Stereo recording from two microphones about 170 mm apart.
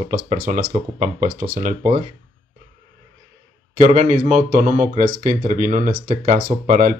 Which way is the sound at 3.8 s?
45° right (ahead or behind).